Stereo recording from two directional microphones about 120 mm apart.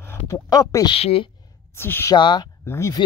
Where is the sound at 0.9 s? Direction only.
50° left (ahead or behind).